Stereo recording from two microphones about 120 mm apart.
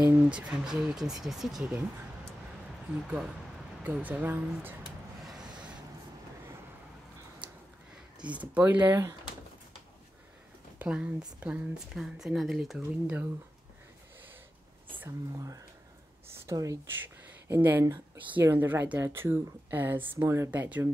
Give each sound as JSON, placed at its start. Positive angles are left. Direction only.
{"t": 0.1, "sound": "speech", "side_deg": -10}
{"t": 3.8, "sound": "speech", "side_deg": -15}
{"t": 5.2, "sound": "vehicle", "side_deg": -5}
{"t": 8.2, "sound": "speech", "side_deg": -10}
{"t": 10.8, "sound": "speech", "side_deg": -10}
{"t": 15.0, "sound": "speech", "side_deg": -30}
{"t": 17.0, "sound": "a sound", "side_deg": -15}
{"t": 18.3, "sound": "speech", "side_deg": -20}